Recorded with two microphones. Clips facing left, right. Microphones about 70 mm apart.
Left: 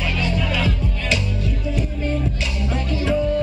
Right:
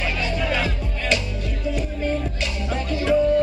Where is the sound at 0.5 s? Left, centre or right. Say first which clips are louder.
Left 1 dB; right.